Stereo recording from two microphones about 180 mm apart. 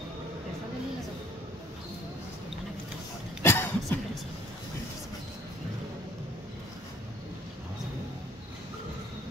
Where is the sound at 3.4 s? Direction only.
15° left (ahead or behind).